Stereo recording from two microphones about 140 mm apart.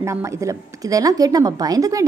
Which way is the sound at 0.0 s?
20° right (ahead or behind).